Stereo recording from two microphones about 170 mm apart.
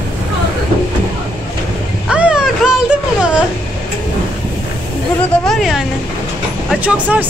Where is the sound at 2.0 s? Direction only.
5° right (ahead or behind).